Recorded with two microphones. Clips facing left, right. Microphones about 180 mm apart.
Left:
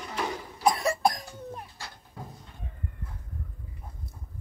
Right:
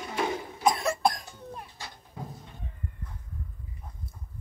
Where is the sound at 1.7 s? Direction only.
20° right (ahead or behind).